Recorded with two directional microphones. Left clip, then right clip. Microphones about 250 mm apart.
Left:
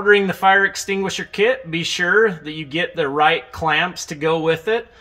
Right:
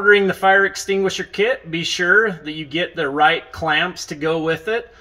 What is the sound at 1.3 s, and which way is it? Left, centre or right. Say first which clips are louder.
Speech: left 6 dB; centre.